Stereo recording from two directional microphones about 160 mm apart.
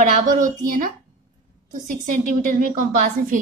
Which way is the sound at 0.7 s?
60° right (ahead or behind).